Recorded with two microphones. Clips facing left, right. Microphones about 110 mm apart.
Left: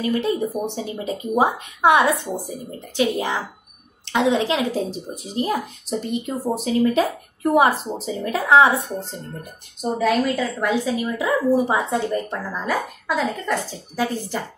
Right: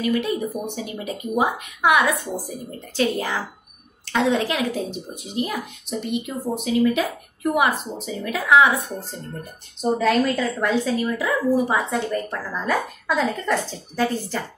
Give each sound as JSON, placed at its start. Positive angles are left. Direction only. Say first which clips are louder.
{"t": 0.0, "sound": "speech", "louder": "left 1 dB", "side_deg": 30}
{"t": 3.0, "sound": "a child's voice", "louder": "left 1 dB", "side_deg": 20}
{"t": 4.7, "sound": "speech", "louder": "left 3 dB", "side_deg": 35}
{"t": 9.4, "sound": "a woman's voice", "louder": "right 4 dB", "side_deg": 10}